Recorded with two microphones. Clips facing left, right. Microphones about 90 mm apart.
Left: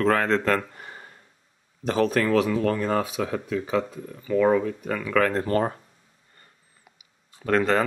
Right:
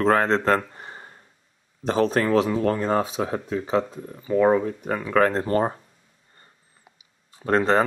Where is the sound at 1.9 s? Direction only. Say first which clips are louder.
Right 1 dB; 30° right (ahead or behind).